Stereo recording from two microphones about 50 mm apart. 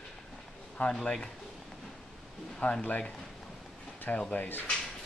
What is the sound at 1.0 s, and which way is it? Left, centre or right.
Speech, left.